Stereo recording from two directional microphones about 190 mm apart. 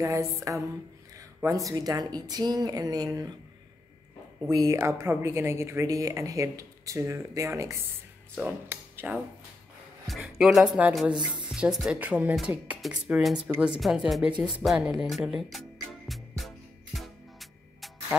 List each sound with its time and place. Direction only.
0.0 s a woman's voice: 15° right (ahead or behind)
4.4 s a woman's voice: 15° right (ahead or behind); by 15.6 s centre (ahead or behind)
16.1 s music: centre (ahead or behind)